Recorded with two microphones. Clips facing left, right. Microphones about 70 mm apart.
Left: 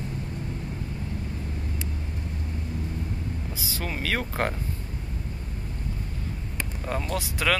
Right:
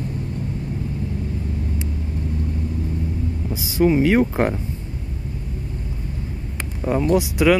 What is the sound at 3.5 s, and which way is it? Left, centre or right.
Speech, right.